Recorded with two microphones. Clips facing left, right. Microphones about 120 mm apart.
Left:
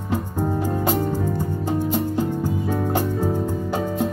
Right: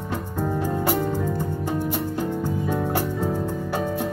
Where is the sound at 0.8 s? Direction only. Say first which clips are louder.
Left 1 dB; 20° left (ahead or behind).